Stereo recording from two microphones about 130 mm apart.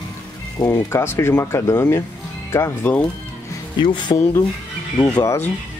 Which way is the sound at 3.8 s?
35° left (ahead or behind).